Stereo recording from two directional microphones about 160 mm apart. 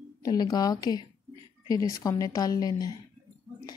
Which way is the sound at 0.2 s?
25° left (ahead or behind).